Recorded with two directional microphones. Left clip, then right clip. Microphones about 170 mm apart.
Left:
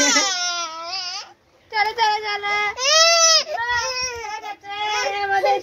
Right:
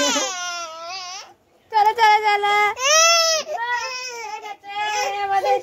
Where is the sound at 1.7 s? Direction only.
50° right (ahead or behind); by 2.7 s 75° right (ahead or behind).